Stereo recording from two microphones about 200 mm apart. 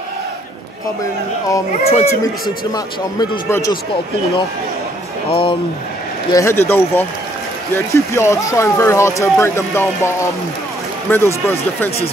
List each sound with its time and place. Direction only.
1.9 s speech: 30° left (ahead or behind)
2.7 s speech: 15° left (ahead or behind)
5.3 s speech: 25° left (ahead or behind)
6.3 s speech: 15° left (ahead or behind)